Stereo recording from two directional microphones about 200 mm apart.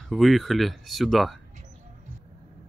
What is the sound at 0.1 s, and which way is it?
Speech, centre (ahead or behind).